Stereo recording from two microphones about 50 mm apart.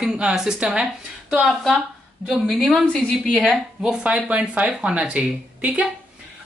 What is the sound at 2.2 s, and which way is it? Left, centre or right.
A woman's voice, centre.